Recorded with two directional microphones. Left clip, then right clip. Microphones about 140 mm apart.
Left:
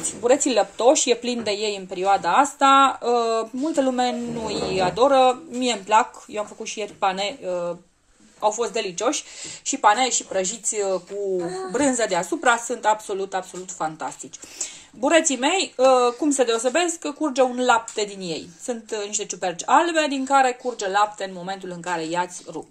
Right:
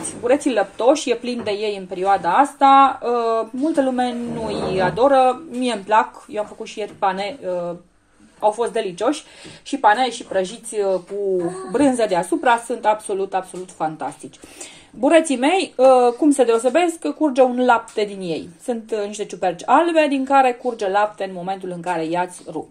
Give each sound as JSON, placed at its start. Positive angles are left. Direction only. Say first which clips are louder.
{"t": 0.2, "sound": "speech", "louder": "right 1 dB", "side_deg": 30}
{"t": 11.7, "sound": "speech", "louder": "right 4 dB", "side_deg": 5}